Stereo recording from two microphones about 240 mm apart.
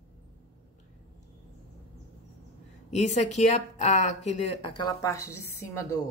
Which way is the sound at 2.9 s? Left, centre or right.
Left.